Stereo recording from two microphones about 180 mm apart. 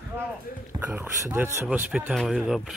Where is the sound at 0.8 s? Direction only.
10° right (ahead or behind).